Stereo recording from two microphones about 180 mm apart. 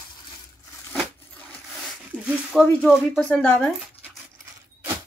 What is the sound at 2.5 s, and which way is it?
Speech, centre (ahead or behind).